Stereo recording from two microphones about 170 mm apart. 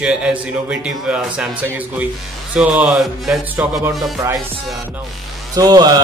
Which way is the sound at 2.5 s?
5° right (ahead or behind).